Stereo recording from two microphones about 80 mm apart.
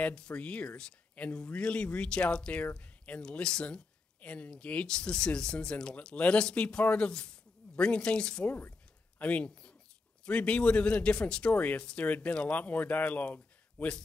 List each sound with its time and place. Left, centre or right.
0.0 s speech: centre